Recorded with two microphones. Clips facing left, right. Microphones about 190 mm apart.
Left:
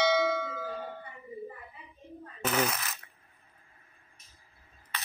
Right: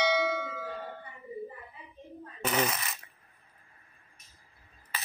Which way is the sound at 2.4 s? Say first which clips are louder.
Even; centre (ahead or behind).